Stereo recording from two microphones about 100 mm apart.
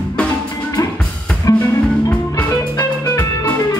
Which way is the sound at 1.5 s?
35° left (ahead or behind).